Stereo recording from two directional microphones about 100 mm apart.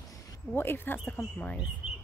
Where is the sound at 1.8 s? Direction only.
5° right (ahead or behind).